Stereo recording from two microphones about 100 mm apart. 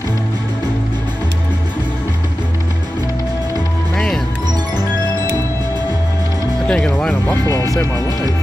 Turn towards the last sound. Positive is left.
turn(degrees=10)  # may be behind; listen again after turning